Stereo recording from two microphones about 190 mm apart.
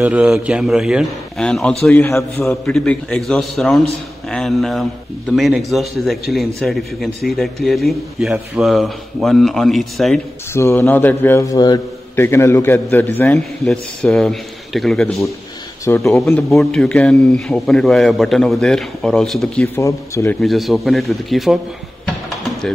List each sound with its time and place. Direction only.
0.0 s a man's voice: 5° right (ahead or behind)
10.5 s a man's voice: 15° left (ahead or behind)
15.8 s a man's voice: 15° left (ahead or behind)
16.2 s a man's voice: 5° left (ahead or behind)
19.8 s a man's voice: 15° left (ahead or behind)
20.3 s a man's voice: centre (ahead or behind)
22.0 s a sound: centre (ahead or behind)